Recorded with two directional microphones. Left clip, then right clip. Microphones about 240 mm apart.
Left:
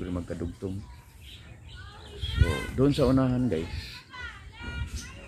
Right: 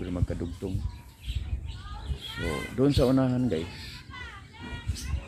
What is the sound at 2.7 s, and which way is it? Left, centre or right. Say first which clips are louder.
Speech: even; centre.